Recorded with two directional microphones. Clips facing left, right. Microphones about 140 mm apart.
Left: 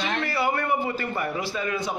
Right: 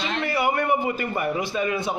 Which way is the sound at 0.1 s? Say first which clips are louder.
Right 3 dB; 20° right (ahead or behind).